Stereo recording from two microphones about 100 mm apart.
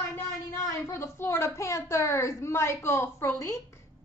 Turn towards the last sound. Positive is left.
turn(degrees=30)  # may be behind; listen again after turning